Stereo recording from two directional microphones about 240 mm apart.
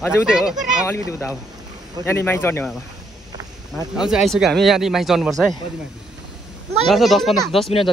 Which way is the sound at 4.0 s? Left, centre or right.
Centre.